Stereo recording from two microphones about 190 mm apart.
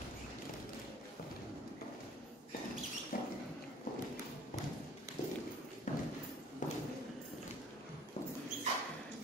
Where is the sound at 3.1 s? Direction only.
50° left (ahead or behind).